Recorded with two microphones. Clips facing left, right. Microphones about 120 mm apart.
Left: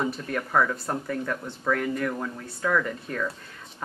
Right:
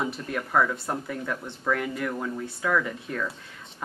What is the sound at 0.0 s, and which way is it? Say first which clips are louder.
Speech: left 1 dB; centre (ahead or behind).